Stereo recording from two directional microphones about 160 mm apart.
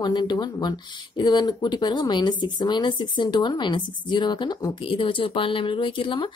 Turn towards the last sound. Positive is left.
turn(degrees=30)  # may be behind; listen again after turning